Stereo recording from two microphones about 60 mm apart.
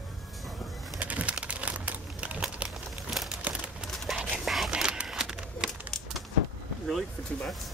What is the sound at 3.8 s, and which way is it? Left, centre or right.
Dog, centre.